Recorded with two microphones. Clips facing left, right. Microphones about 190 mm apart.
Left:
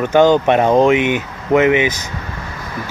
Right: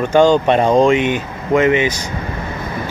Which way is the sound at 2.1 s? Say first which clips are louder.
Right 4 dB; 25° right (ahead or behind).